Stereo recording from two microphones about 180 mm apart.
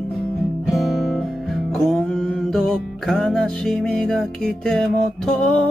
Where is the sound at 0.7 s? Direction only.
Centre (ahead or behind).